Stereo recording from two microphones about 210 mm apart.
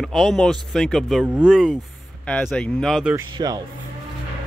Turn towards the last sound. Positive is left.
turn(degrees=-20)  # may be behind; listen again after turning